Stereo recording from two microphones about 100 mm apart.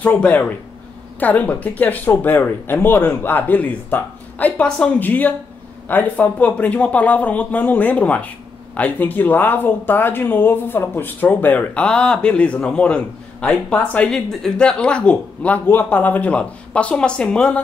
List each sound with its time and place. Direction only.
0.0 s speech: 15° left (ahead or behind)